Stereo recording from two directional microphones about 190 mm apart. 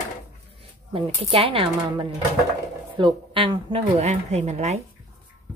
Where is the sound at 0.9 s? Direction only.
30° right (ahead or behind).